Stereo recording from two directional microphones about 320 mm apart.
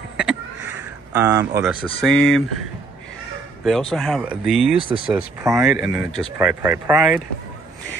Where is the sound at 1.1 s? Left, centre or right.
Centre.